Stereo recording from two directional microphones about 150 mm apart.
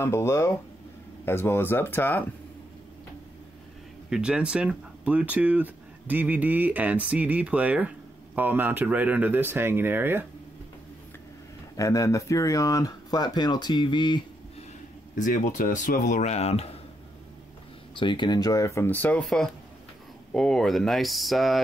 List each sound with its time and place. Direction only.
0.0 s speech: 15° left (ahead or behind)
4.1 s speech: 5° right (ahead or behind)
11.7 s speech: 20° left (ahead or behind)
15.1 s speech: 60° left (ahead or behind)
17.9 s speech: 30° left (ahead or behind); by 21.6 s centre (ahead or behind)